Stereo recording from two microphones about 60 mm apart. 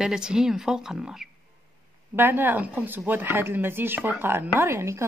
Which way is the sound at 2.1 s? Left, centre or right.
Right.